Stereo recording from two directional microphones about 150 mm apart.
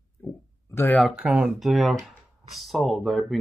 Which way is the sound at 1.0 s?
5° right (ahead or behind).